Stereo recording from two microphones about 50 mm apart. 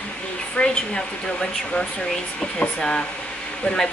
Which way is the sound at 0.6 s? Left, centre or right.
Left.